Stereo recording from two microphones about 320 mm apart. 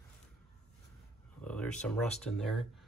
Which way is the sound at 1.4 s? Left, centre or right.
Centre.